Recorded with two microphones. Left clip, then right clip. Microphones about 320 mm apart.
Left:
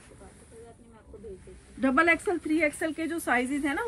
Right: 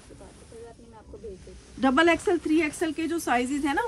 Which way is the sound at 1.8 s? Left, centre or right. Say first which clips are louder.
Right 2 dB; centre.